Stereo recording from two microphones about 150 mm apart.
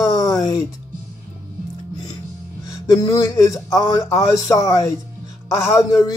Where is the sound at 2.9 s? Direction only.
25° left (ahead or behind).